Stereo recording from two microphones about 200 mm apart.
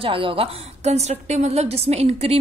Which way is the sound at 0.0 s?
25° right (ahead or behind).